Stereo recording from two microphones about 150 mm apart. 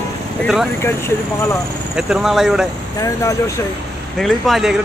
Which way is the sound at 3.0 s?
20° left (ahead or behind).